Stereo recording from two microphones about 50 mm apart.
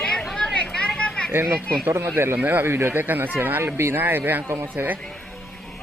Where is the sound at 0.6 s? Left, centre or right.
Centre.